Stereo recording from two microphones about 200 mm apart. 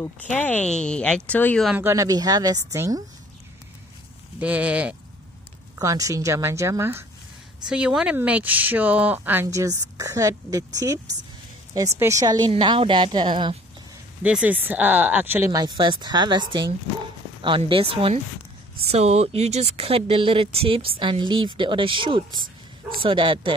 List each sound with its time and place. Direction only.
0.0 s speech: 10° left (ahead or behind)
1.7 s speech: 10° right (ahead or behind)
4.4 s speech: 5° right (ahead or behind); by 13.6 s 25° right (ahead or behind)
14.2 s speech: 5° right (ahead or behind); by 23.5 s 25° right (ahead or behind)